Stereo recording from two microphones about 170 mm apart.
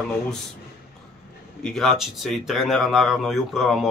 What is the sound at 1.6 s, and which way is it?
Speech, centre (ahead or behind).